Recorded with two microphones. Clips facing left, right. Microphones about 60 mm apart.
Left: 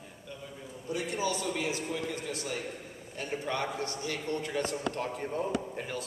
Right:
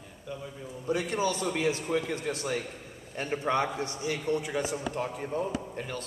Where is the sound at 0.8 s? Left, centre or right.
Right.